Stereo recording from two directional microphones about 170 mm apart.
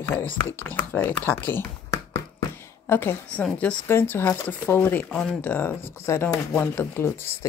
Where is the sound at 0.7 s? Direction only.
10° left (ahead or behind).